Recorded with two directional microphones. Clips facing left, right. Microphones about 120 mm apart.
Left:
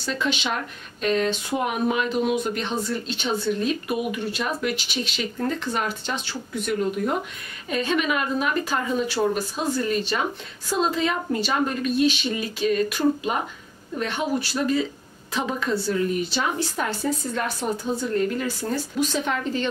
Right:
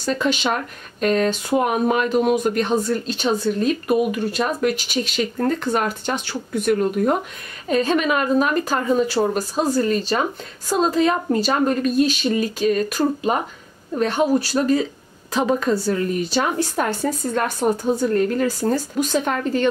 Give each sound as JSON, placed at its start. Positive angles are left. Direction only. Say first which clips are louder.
{"t": 0.0, "sound": "speech", "louder": "right 5 dB", "side_deg": -45}
{"t": 7.7, "sound": "a woman's voice", "louder": "right 5 dB", "side_deg": -40}